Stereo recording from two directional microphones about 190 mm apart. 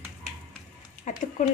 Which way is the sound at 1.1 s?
45° left (ahead or behind).